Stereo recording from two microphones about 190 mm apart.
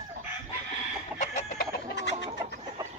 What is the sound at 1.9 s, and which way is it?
Chicken, 65° left (ahead or behind).